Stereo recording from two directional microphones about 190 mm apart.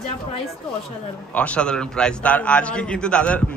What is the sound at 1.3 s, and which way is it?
A man's voice, 5° left (ahead or behind).